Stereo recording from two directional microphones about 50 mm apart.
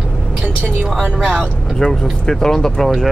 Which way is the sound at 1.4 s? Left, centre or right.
Centre.